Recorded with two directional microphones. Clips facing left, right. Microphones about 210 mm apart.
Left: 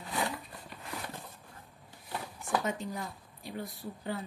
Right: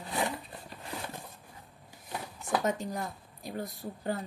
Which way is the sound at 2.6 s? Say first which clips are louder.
Right 3 dB; 40° right (ahead or behind).